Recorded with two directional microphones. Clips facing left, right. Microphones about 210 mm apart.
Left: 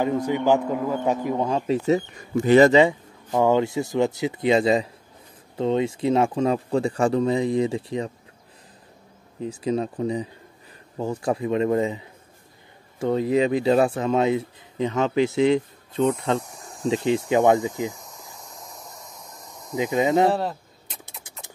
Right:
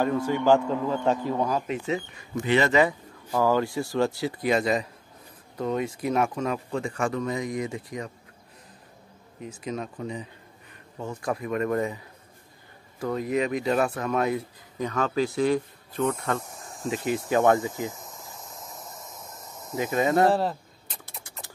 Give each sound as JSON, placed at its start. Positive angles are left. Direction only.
{"t": 0.0, "sound": "a man's voice", "side_deg": 15}
{"t": 1.9, "sound": "speech", "side_deg": 40}
{"t": 2.7, "sound": "speech", "side_deg": 25}
{"t": 9.4, "sound": "speech", "side_deg": 30}
{"t": 13.0, "sound": "speech", "side_deg": 30}
{"t": 16.3, "sound": "speech", "side_deg": 0}
{"t": 16.9, "sound": "a man's voice", "side_deg": 25}
{"t": 17.9, "sound": "cricket", "side_deg": 0}
{"t": 19.7, "sound": "a man's voice", "side_deg": 15}
{"t": 20.2, "sound": "a sound", "side_deg": 0}